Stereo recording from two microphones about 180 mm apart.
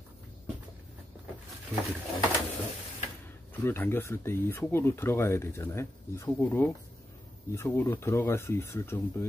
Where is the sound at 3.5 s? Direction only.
10° left (ahead or behind).